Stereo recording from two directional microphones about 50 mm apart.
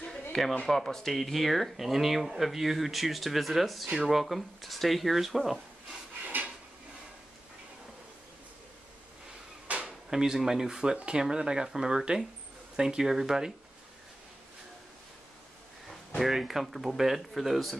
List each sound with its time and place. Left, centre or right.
0.3 s speech: centre
6.2 s drawer open or close: right
9.7 s drawer open or close: right
10.0 s speech: centre
16.2 s speech: centre